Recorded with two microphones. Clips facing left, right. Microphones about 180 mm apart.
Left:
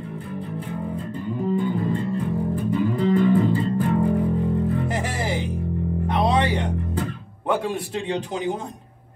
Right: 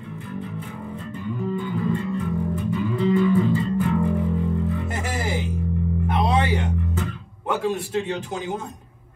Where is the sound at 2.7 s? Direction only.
45° left (ahead or behind).